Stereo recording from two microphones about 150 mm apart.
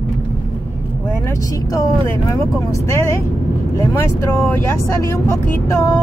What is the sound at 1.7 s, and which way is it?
Music, 20° left (ahead or behind).